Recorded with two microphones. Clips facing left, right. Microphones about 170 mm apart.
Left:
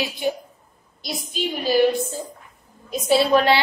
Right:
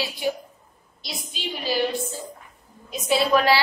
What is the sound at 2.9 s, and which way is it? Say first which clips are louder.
Speech: left 3 dB; 35° left (ahead or behind).